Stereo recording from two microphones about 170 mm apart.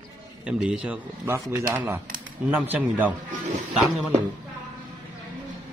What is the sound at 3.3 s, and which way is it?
Speech, 45° right (ahead or behind).